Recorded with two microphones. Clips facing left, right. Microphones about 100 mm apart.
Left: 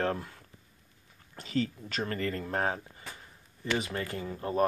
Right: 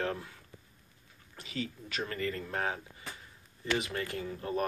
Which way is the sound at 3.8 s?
35° left (ahead or behind).